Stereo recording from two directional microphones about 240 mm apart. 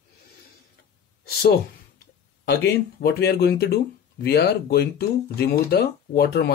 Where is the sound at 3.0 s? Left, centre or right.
Left.